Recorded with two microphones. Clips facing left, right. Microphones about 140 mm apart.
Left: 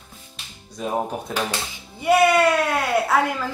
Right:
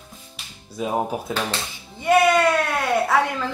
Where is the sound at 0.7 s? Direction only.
5° right (ahead or behind).